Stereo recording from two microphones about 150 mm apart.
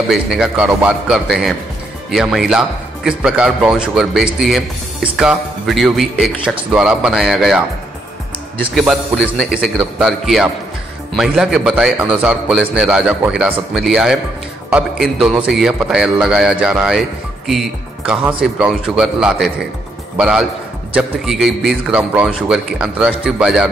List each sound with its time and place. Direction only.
0.1 s speech: 5° right (ahead or behind)
8.7 s speech: centre (ahead or behind)
15.2 s speech: 5° right (ahead or behind)